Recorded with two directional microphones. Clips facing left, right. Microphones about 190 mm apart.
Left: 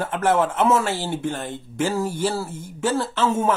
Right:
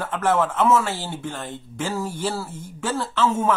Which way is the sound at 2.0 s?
10° left (ahead or behind).